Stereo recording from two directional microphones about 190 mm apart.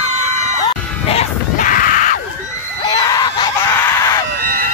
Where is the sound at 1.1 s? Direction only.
40° left (ahead or behind).